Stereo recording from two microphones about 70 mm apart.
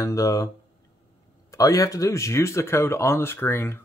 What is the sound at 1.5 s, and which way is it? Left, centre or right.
Speech, left.